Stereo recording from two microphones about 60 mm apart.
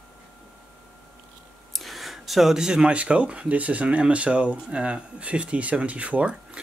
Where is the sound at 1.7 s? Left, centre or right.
Centre.